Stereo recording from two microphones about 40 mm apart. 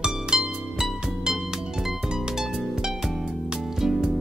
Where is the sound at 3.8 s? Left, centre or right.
Centre.